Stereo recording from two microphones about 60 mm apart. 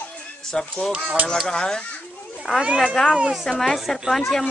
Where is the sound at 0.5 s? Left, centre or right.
Centre.